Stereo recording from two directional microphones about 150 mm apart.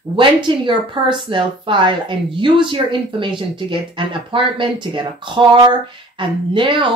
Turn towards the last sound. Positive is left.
turn(degrees=-35)  # may be behind; listen again after turning